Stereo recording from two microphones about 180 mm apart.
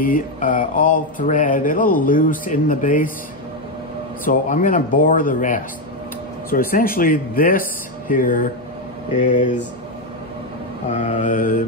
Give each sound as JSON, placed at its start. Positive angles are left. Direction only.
{"t": 0.0, "sound": "speech", "side_deg": 50}
{"t": 4.2, "sound": "speech", "side_deg": 45}
{"t": 10.9, "sound": "speech", "side_deg": 40}